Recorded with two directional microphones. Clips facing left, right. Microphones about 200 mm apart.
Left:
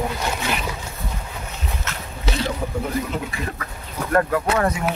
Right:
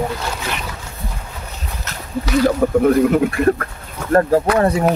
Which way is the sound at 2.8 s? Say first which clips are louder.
Right 15 dB; 60° right (ahead or behind).